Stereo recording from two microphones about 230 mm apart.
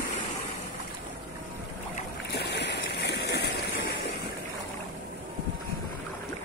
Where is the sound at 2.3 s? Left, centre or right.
Left.